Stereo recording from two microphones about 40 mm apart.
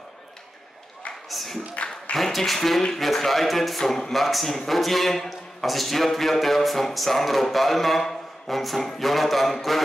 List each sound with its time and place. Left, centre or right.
1.3 s speech: centre